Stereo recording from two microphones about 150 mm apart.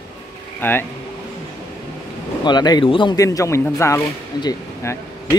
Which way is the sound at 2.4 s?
30° left (ahead or behind).